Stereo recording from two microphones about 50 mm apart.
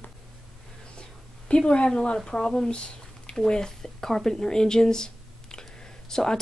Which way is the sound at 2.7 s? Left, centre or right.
Left.